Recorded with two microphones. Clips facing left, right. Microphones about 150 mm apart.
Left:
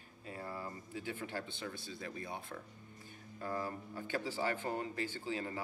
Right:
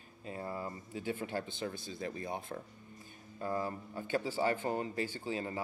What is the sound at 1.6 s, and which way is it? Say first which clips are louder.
Speech: right 5 dB; 30° right (ahead or behind).